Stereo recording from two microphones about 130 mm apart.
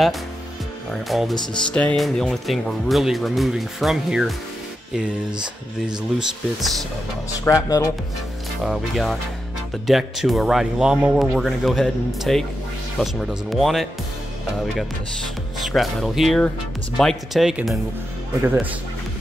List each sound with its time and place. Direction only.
1.0 s speech: centre (ahead or behind)
7.4 s speech: 25° left (ahead or behind)
8.6 s speech: centre (ahead or behind)
15.6 s speech: centre (ahead or behind)
18.4 s speech: 15° right (ahead or behind)